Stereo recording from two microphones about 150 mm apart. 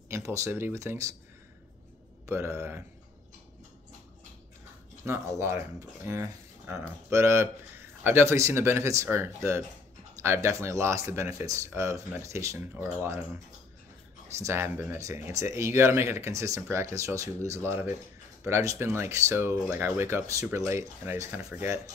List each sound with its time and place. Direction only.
0.1 s speech: 20° right (ahead or behind)
2.2 s speech: 15° right (ahead or behind)
5.0 s speech: 20° right (ahead or behind)
14.4 s speech: 15° right (ahead or behind)